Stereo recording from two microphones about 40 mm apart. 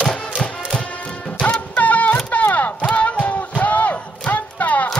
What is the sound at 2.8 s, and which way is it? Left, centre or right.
Music, left.